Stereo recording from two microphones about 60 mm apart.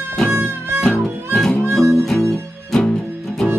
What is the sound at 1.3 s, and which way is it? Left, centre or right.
Harmonica, centre.